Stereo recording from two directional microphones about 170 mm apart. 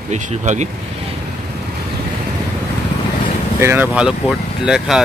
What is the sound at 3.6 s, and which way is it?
Speech, 10° right (ahead or behind).